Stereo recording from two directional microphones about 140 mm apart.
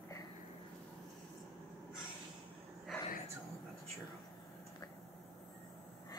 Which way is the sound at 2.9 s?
Centre (ahead or behind).